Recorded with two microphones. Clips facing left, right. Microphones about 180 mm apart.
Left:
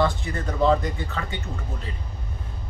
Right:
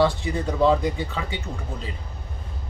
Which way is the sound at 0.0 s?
15° right (ahead or behind).